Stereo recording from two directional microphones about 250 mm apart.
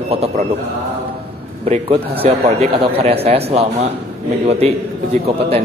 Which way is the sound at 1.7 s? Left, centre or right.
Right.